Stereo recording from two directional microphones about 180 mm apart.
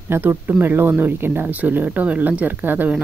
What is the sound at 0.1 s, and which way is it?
Speech, 10° right (ahead or behind).